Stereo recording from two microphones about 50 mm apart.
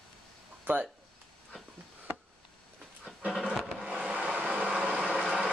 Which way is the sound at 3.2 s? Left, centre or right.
Centre.